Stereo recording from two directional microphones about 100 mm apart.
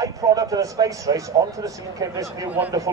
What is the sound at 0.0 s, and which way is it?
Speech, 35° right (ahead or behind).